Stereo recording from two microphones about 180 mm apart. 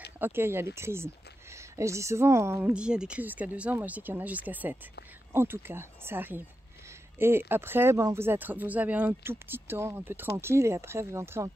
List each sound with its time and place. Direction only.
0.2 s speech: 10° right (ahead or behind)